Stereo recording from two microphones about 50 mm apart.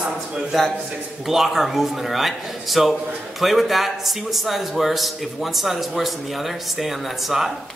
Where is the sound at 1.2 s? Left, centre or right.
Centre.